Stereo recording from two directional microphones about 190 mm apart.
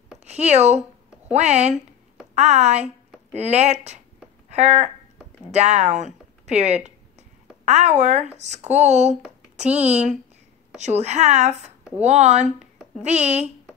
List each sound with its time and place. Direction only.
0.2 s speech: 35° right (ahead or behind)
6.4 s a sound: 35° right (ahead or behind)
7.6 s a woman's voice: 35° right (ahead or behind)